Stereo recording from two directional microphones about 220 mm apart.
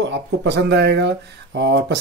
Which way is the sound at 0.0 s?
55° right (ahead or behind).